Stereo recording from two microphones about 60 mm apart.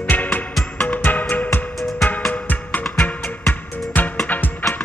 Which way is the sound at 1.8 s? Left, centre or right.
Centre.